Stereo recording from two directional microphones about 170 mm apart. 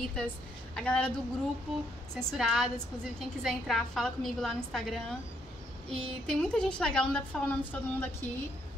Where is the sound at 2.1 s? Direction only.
5° left (ahead or behind).